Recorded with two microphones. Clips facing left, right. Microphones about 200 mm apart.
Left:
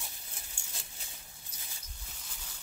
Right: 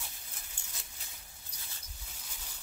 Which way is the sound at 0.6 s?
10° left (ahead or behind).